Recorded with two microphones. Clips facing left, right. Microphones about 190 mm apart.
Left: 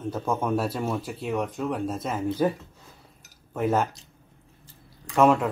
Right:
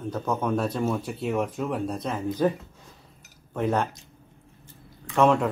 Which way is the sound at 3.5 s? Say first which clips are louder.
Left 1 dB; 5° left (ahead or behind).